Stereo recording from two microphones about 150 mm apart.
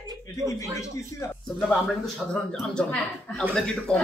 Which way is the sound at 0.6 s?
20° left (ahead or behind).